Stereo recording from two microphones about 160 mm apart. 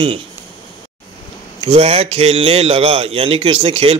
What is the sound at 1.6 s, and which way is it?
A man's voice, 35° right (ahead or behind).